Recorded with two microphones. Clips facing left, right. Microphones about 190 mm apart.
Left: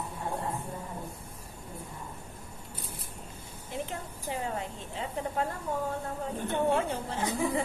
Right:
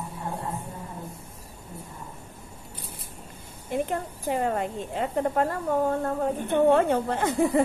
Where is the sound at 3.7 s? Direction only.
55° right (ahead or behind).